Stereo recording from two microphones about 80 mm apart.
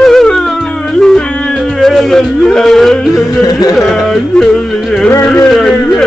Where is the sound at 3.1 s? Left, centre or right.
Left.